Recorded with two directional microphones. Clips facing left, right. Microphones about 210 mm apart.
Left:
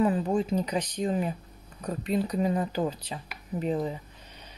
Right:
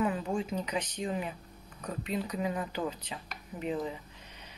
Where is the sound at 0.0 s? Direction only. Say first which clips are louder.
Left 6 dB; 35° left (ahead or behind).